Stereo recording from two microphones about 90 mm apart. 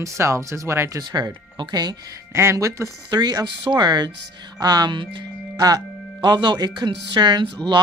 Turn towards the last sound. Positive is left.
turn(degrees=-55)  # may be behind; listen again after turning